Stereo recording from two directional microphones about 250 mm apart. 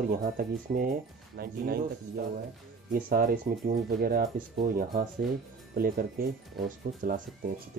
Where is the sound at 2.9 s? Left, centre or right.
Right.